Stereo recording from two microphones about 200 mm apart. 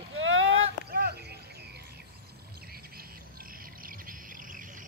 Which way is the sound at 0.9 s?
50° right (ahead or behind).